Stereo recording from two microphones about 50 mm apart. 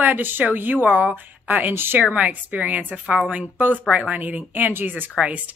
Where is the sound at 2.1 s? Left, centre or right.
Right.